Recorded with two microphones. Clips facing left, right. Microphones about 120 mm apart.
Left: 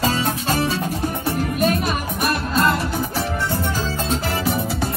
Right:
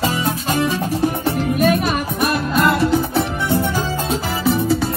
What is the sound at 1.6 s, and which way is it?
Music, 55° right (ahead or behind).